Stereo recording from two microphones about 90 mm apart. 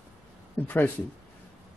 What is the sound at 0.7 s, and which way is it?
Speech, 20° left (ahead or behind).